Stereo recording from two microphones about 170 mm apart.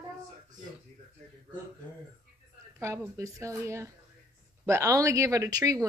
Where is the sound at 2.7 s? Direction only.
15° right (ahead or behind).